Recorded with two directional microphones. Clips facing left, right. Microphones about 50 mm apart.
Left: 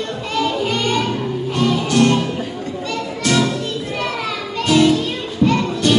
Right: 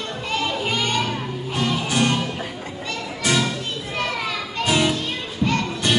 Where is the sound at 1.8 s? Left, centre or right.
Centre.